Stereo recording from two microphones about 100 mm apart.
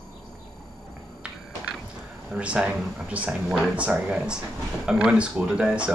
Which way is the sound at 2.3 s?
10° right (ahead or behind).